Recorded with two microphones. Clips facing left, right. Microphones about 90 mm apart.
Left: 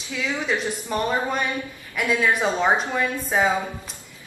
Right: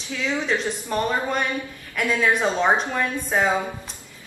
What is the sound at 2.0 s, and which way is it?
A woman's voice, 5° left (ahead or behind).